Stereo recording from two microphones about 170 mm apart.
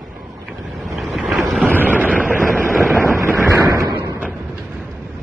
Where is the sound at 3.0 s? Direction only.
15° right (ahead or behind).